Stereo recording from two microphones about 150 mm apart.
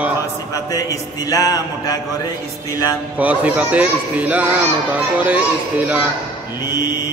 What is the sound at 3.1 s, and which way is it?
Speech, 10° right (ahead or behind).